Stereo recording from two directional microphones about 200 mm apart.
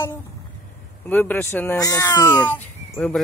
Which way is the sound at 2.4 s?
10° left (ahead or behind).